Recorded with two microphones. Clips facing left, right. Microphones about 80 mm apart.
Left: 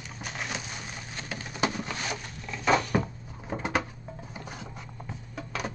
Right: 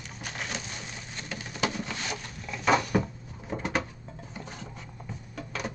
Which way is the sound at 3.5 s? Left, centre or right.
Centre.